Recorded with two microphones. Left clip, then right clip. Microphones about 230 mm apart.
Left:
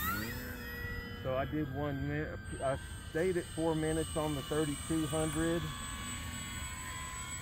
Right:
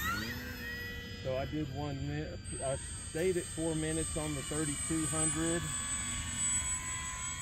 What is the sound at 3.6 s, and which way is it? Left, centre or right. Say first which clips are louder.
Speech: left 2 dB; left.